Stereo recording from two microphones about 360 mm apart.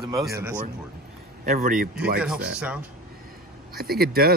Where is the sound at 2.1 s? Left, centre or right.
Centre.